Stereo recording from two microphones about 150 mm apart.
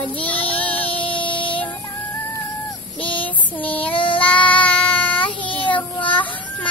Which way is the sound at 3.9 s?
35° left (ahead or behind).